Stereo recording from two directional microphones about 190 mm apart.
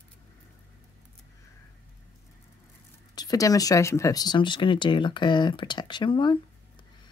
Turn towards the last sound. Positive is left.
turn(degrees=25)  # may be behind; listen again after turning